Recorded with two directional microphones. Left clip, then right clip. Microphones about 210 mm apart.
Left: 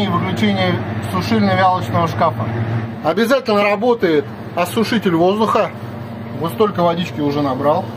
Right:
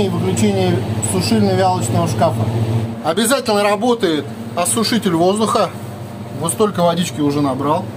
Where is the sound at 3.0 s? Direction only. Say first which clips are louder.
Left 2 dB; 5° left (ahead or behind); by 7.3 s 15° right (ahead or behind).